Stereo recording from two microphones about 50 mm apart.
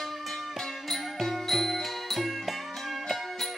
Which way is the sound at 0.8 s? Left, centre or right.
Centre.